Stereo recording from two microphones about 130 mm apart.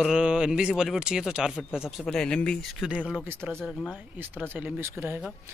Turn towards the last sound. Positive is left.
turn(degrees=-15)  # may be behind; listen again after turning